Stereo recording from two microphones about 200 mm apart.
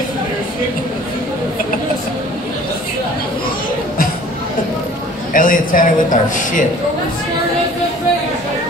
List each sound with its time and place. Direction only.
5.3 s speech: 45° left (ahead or behind)